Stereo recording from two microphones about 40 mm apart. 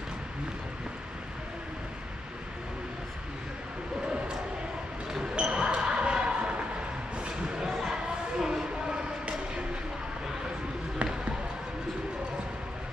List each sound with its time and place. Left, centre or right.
5.3 s basketball bounce: right
7.4 s a sound: centre
11.0 s basketball bounce: right